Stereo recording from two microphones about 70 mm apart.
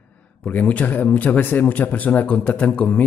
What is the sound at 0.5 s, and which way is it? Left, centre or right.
A man's voice, left.